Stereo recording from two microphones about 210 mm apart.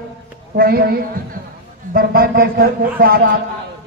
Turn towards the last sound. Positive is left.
turn(degrees=-45)  # may be behind; listen again after turning